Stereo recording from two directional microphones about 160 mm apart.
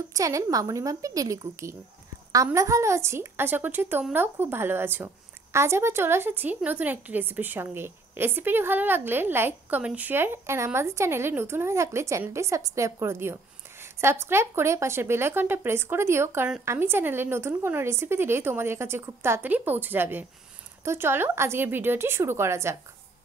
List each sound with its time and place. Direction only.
0.1 s a woman's voice: 20° right (ahead or behind)